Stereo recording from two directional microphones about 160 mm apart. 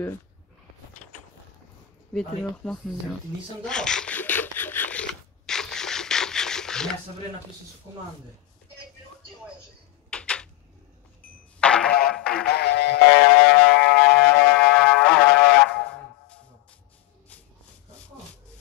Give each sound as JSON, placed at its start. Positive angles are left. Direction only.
{"t": 2.1, "sound": "speech", "side_deg": 5}
{"t": 3.6, "sound": "a sound", "side_deg": 5}
{"t": 10.0, "sound": "a sound", "side_deg": 5}
{"t": 11.6, "sound": "music", "side_deg": 5}
{"t": 12.4, "sound": "music", "side_deg": 90}
{"t": 13.8, "sound": "music", "side_deg": 5}